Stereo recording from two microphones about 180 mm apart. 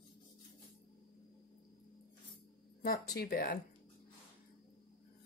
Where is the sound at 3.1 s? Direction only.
55° left (ahead or behind).